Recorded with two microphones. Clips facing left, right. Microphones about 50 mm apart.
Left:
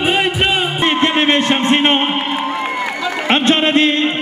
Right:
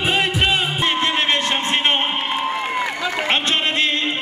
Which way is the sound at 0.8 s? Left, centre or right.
Left.